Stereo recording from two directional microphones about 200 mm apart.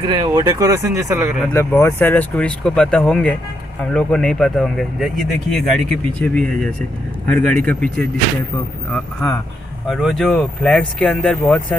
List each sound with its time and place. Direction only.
0.0 s speech: 20° right (ahead or behind)
1.5 s speech: 10° left (ahead or behind)
9.8 s speech: centre (ahead or behind)